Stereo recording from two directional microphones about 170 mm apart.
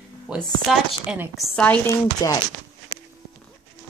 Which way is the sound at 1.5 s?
10° left (ahead or behind).